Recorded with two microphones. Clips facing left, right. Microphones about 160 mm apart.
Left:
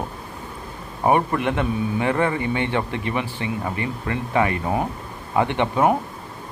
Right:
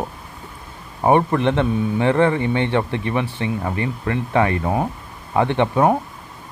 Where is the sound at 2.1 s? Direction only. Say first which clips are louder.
Right 5 dB; 25° right (ahead or behind).